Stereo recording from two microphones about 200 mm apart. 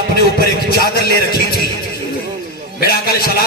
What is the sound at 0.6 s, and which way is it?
Speech, 50° left (ahead or behind).